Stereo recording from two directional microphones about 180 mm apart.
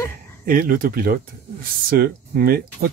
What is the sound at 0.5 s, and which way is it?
Speech, 50° right (ahead or behind).